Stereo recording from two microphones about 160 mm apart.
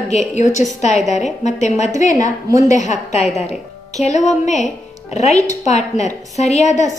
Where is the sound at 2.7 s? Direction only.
45° left (ahead or behind).